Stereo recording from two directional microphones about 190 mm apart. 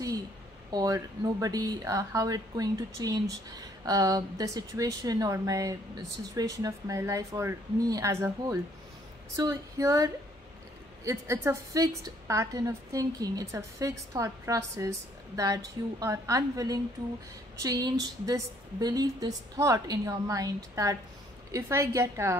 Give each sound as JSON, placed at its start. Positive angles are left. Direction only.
{"t": 0.7, "sound": "a woman's voice", "side_deg": -20}